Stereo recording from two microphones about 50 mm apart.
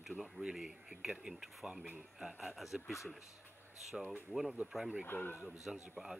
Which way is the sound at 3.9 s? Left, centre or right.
Centre.